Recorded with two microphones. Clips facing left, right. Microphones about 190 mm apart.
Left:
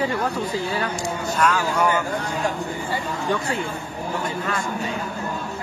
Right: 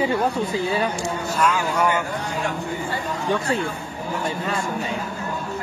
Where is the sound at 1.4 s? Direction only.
Centre (ahead or behind).